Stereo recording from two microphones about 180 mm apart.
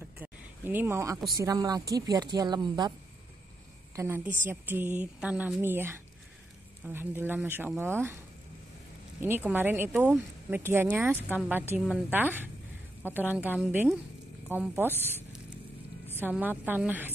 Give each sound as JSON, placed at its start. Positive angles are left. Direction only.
{"t": 0.2, "sound": "speech", "side_deg": -10}
{"t": 3.9, "sound": "a woman's voice", "side_deg": -15}
{"t": 9.2, "sound": "speech", "side_deg": -10}
{"t": 14.9, "sound": "speech", "side_deg": 10}
{"t": 16.2, "sound": "speech", "side_deg": -10}